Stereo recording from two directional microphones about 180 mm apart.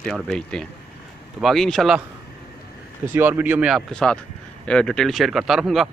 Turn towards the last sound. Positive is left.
turn(degrees=0)  # may be behind; listen again after turning